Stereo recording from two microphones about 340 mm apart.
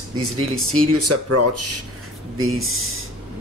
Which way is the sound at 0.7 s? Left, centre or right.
Right.